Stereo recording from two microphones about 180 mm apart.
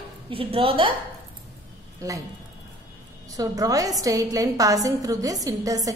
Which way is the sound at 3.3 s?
20° right (ahead or behind).